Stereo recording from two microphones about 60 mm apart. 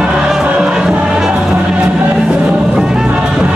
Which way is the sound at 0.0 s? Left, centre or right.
Centre.